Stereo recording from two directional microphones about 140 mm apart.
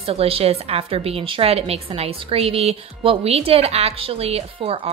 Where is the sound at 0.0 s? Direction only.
45° right (ahead or behind).